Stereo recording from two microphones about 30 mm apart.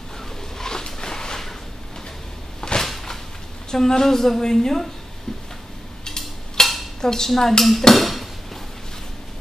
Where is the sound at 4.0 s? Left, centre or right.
Centre.